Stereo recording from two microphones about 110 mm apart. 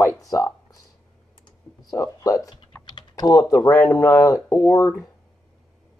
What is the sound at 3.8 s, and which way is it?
Speech, 20° left (ahead or behind).